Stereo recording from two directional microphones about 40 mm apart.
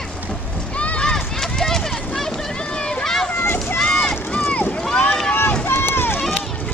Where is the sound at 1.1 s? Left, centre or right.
Centre.